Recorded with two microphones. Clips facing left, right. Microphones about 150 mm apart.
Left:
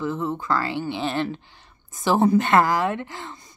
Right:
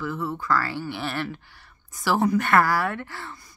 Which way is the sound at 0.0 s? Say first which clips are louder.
Left 3 dB; 20° left (ahead or behind).